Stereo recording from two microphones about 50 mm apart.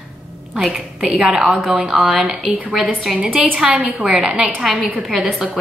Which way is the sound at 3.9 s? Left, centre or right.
Centre.